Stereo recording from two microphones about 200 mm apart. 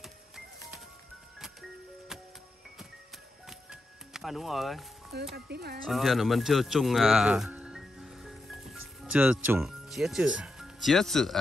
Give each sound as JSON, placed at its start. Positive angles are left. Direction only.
{"t": 3.4, "sound": "music", "side_deg": 0}
{"t": 5.3, "sound": "speech", "side_deg": -50}
{"t": 5.9, "sound": "speech", "side_deg": 0}